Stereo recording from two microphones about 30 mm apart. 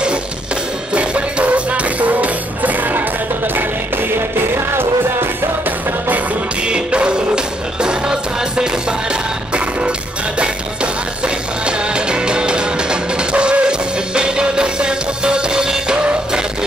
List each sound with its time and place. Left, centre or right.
0.9 s music: right
6.7 s music: right
11.2 s music: right